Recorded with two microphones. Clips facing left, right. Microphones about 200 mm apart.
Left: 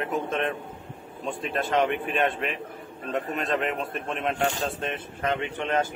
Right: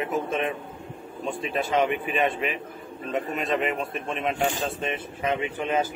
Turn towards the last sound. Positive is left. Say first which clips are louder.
# right 1 dB
turn(degrees=-5)  # may be behind; listen again after turning